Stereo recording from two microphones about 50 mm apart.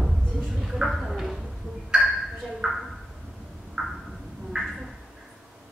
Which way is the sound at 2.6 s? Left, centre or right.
Centre.